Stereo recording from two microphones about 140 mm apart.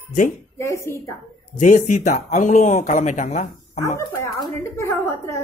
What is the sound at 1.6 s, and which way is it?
Speech, 65° left (ahead or behind).